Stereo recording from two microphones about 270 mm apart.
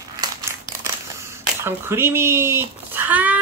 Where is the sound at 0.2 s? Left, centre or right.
Centre.